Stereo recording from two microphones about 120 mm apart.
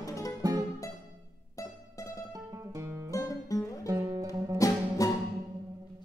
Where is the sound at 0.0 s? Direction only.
25° left (ahead or behind).